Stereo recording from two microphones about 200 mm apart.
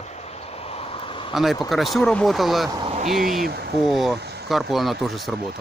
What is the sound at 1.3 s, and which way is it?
Speech, centre (ahead or behind).